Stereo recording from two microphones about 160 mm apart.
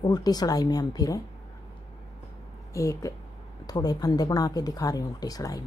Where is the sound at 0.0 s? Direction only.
25° left (ahead or behind).